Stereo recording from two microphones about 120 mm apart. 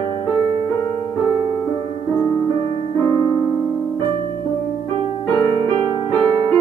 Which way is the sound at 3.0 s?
25° left (ahead or behind).